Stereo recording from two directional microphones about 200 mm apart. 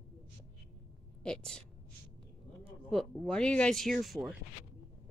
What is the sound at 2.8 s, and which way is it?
A woman's voice, 5° left (ahead or behind).